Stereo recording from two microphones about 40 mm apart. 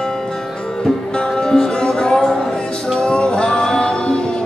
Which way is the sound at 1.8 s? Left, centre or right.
Left.